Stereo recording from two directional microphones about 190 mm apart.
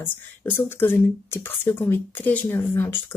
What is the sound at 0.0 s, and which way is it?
Speech, 10° left (ahead or behind).